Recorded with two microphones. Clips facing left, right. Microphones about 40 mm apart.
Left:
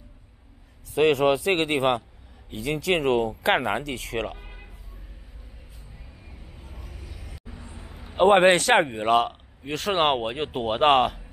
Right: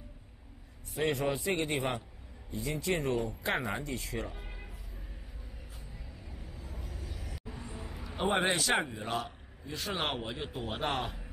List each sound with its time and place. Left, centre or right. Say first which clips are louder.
0.9 s speech: left 12 dB; left
4.4 s a sound: left 2 dB; left
6.5 s vehicle: even; left
7.1 s vehicle: even; centre
8.2 s a man's voice: left 13 dB; left